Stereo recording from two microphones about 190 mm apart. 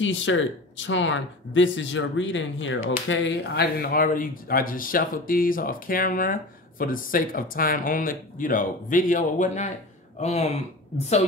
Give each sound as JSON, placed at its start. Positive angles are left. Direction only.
{"t": 0.0, "sound": "speech", "side_deg": 80}